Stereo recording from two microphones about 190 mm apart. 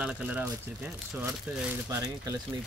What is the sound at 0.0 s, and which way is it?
Speech, 5° right (ahead or behind).